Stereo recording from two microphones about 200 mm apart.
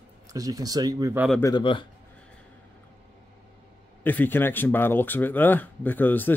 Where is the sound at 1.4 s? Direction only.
20° left (ahead or behind).